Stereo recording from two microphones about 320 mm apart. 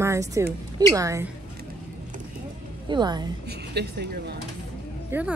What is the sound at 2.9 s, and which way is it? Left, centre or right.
Speech, centre.